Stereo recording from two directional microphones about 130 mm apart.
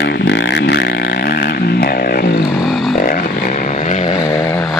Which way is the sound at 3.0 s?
90° left.